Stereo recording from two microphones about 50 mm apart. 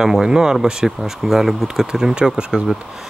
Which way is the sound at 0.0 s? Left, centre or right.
Centre.